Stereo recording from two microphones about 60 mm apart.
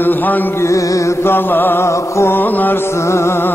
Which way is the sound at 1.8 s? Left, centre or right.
Left.